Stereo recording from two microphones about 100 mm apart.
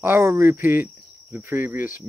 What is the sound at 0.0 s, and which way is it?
Speech, 25° right (ahead or behind).